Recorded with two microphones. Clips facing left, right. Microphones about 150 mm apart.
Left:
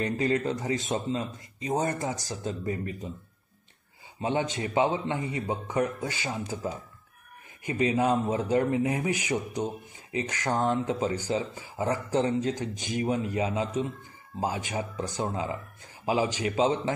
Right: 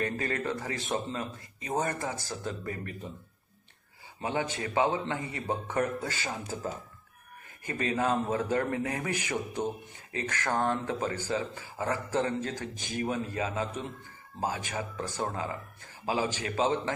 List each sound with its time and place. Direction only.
0.0 s speech: 20° left (ahead or behind)
4.2 s speech: 25° left (ahead or behind)
14.7 s speech: 15° left (ahead or behind)